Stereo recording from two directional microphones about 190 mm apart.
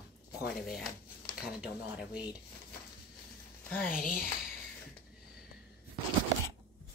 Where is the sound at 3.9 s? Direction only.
45° left (ahead or behind).